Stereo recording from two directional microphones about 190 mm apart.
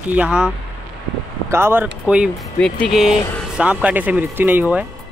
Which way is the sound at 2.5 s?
5° left (ahead or behind).